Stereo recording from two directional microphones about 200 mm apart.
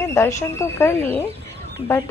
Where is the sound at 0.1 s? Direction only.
15° left (ahead or behind).